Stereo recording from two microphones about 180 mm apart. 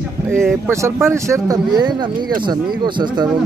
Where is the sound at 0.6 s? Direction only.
15° right (ahead or behind).